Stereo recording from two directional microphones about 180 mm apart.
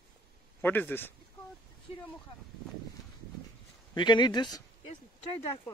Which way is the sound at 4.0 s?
25° left (ahead or behind).